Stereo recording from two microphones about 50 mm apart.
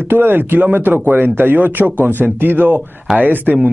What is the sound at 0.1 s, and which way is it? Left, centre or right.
Speech, right.